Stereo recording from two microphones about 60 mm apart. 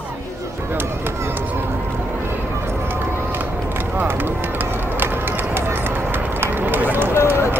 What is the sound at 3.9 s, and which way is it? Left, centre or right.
Run, right.